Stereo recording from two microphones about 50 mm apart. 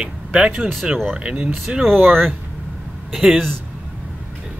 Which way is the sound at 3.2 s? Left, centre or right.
Centre.